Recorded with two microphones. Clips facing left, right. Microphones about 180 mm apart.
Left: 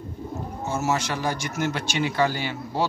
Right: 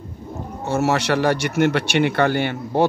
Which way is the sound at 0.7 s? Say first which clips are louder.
Right 7 dB; 65° right (ahead or behind).